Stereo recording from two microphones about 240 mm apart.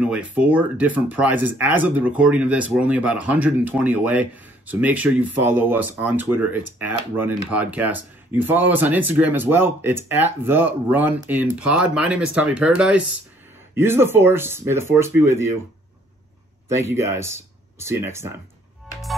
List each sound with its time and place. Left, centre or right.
0.0 s speech: centre
16.9 s speech: centre